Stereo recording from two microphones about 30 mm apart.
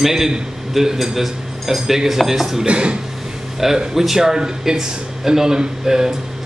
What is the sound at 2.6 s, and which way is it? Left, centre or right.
Speech, right.